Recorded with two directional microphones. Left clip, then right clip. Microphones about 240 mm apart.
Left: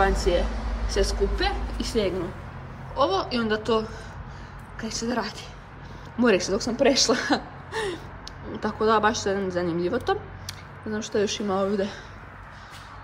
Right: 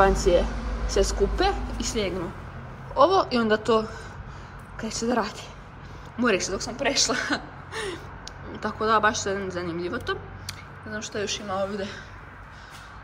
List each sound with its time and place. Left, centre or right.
0.0 s a woman's voice: centre
1.8 s a woman's voice: centre